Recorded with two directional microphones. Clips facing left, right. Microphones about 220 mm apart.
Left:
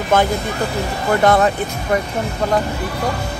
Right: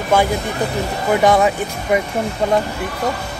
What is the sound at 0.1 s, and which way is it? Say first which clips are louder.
Speech: even; 10° right (ahead or behind).